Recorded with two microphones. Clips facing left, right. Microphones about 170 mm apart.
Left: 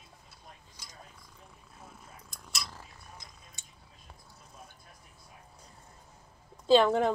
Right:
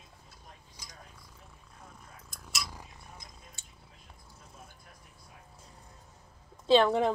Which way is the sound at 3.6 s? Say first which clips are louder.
Even; 15° left (ahead or behind).